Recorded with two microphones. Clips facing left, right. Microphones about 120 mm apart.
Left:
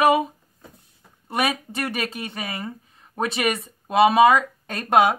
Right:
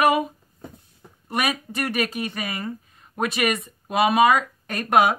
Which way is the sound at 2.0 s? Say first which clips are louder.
Right 2 dB; 25° left (ahead or behind).